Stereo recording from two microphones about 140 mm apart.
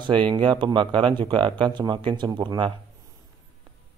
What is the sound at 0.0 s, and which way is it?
A man's voice, 35° right (ahead or behind).